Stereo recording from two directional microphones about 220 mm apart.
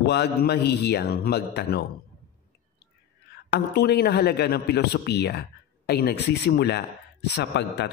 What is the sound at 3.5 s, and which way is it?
Speech, 45° left (ahead or behind).